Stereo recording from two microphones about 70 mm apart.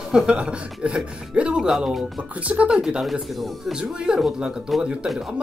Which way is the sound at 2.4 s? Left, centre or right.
Centre.